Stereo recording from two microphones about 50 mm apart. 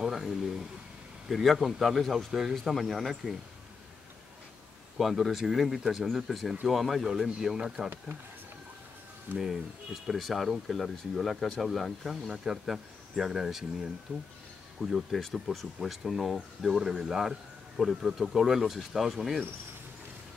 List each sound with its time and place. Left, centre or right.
0.0 s a sound: centre
1.3 s speech: centre
4.9 s speech: centre
7.5 s speech: centre
9.3 s speech: right
10.0 s a man's voice: centre